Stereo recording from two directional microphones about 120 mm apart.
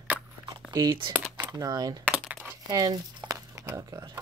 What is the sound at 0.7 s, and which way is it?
Speech, 40° right (ahead or behind).